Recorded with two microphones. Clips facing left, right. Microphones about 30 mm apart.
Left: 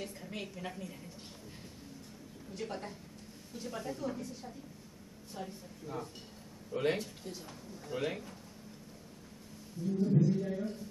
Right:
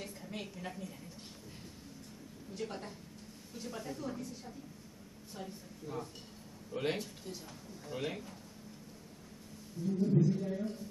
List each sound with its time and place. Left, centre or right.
0.0 s a sound: centre
2.5 s a woman's voice: centre
9.8 s a woman's voice: centre